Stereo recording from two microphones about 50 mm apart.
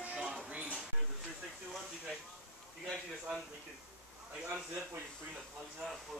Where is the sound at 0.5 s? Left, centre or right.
Right.